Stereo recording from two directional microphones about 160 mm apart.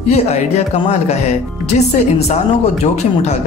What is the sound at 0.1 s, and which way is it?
Speech, 40° left (ahead or behind).